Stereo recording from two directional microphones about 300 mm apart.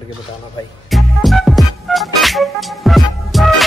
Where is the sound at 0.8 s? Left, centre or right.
Centre.